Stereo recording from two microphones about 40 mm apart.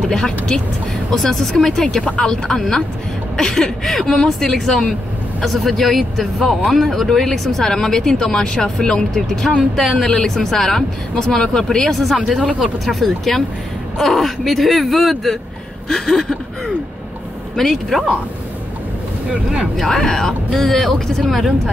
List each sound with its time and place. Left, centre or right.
0.1 s speech: centre
11.9 s speech: centre
12.8 s speech: centre
20.0 s speech: centre